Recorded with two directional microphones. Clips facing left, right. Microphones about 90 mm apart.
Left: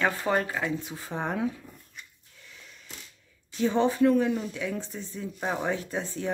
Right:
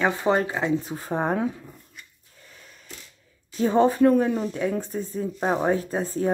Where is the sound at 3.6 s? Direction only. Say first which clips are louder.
Right 4 dB; 45° right (ahead or behind).